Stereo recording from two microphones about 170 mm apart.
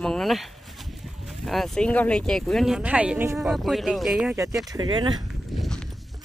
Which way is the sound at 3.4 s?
Centre (ahead or behind).